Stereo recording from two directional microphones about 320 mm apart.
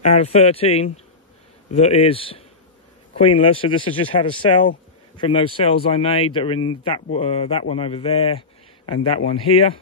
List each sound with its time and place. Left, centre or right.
0.0 s a man's voice: centre